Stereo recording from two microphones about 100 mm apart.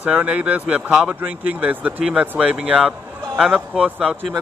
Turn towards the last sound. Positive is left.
turn(degrees=-5)  # may be behind; listen again after turning